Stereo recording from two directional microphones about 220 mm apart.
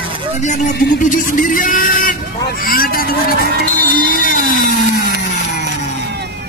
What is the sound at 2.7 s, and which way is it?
Vehicle, 40° left (ahead or behind).